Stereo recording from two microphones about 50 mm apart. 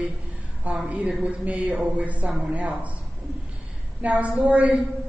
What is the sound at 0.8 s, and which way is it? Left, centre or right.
A woman's voice, right.